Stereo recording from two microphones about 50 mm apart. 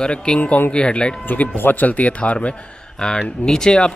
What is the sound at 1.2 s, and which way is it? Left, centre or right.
Speech, left.